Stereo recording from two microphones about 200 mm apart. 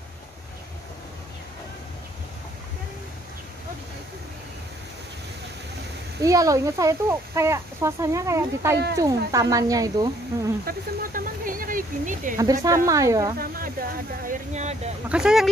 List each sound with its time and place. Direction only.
6.2 s speech: 15° right (ahead or behind)
10.6 s speech: 45° right (ahead or behind)
12.6 s speech: 15° right (ahead or behind)
13.4 s speech: 45° right (ahead or behind)
15.0 s speech: 5° right (ahead or behind)